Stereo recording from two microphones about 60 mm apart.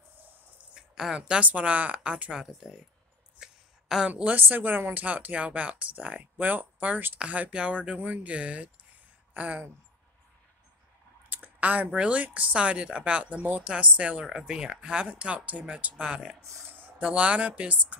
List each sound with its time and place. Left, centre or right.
0.7 s speech: centre
3.4 s a sound: centre
4.1 s speech: right
6.3 s speech: right
11.2 s speech: right
16.7 s a sound: right
17.1 s speech: right